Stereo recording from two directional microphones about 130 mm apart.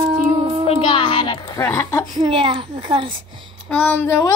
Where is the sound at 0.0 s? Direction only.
40° right (ahead or behind).